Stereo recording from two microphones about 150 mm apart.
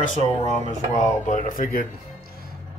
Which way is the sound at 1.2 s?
55° left (ahead or behind).